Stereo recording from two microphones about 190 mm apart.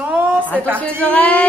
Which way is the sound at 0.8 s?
5° left (ahead or behind).